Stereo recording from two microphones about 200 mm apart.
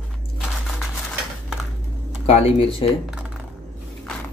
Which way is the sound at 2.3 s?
30° left (ahead or behind).